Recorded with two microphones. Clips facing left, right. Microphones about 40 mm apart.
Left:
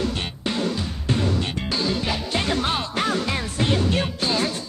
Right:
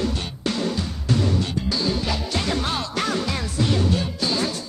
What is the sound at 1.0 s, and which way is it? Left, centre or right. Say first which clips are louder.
Music: right 1 dB; left.